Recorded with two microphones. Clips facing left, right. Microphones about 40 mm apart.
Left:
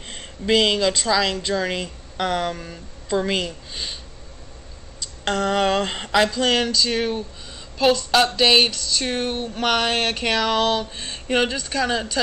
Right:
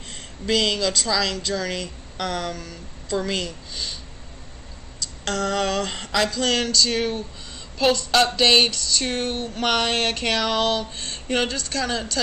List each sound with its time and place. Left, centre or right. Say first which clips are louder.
0.1 s speech: left 4 dB; left
5.0 s a sound: left 3 dB; left; by 7.2 s centre
7.8 s speech: left 1 dB; centre